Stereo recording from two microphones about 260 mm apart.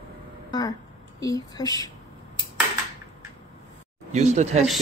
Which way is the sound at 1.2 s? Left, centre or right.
Centre.